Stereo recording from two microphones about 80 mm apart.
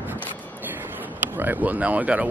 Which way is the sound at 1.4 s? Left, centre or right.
Right.